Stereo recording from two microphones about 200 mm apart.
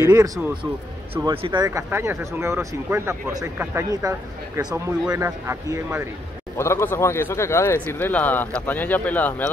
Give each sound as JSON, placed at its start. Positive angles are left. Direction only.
{"t": 0.1, "sound": "speech", "side_deg": -15}
{"t": 1.1, "sound": "speech", "side_deg": -30}
{"t": 6.6, "sound": "speech", "side_deg": 10}